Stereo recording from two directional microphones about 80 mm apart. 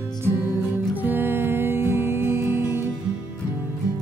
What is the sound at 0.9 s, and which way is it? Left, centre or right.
Music, right.